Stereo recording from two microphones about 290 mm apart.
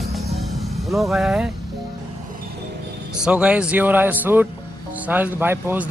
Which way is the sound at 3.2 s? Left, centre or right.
Centre.